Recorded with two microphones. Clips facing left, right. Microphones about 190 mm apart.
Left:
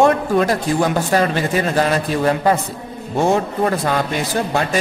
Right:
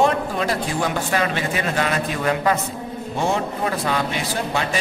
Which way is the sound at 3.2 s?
45° left (ahead or behind).